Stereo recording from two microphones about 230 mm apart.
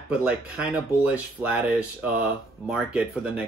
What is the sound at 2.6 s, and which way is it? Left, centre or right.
Speech, centre.